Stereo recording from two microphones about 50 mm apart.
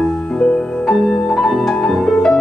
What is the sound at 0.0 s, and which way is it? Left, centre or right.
Music, centre.